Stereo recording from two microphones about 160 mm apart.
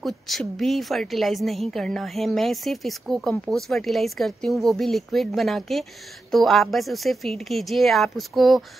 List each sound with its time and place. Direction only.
0.0 s a woman's voice: centre (ahead or behind)